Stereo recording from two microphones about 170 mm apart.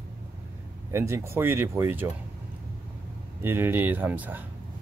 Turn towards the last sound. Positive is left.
turn(degrees=-10)  # may be behind; listen again after turning